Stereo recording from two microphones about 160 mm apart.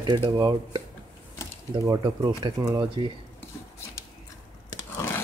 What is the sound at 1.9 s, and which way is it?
Speech, 25° right (ahead or behind).